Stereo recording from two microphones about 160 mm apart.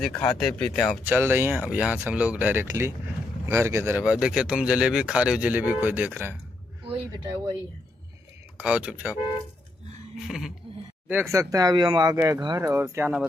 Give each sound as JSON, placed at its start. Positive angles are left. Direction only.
{"t": 0.0, "sound": "speech", "side_deg": 5}
{"t": 1.0, "sound": "speech", "side_deg": -15}
{"t": 4.0, "sound": "speech", "side_deg": -5}
{"t": 8.5, "sound": "speech", "side_deg": -5}
{"t": 10.2, "sound": "speech", "side_deg": 0}
{"t": 11.1, "sound": "speech", "side_deg": -15}